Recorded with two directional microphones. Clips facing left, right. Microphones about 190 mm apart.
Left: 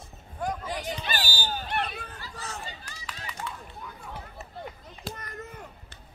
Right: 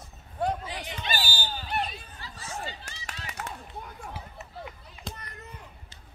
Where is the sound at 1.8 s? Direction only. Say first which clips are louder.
Left 1 dB; 65° left (ahead or behind).